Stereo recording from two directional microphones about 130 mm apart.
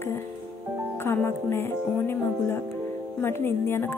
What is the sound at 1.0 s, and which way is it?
Music, 15° left (ahead or behind).